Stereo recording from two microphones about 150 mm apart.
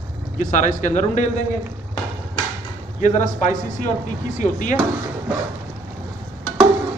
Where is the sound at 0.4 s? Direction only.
60° left (ahead or behind).